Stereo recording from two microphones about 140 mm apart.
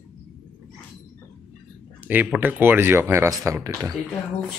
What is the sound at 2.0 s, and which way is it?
Speech, 10° right (ahead or behind).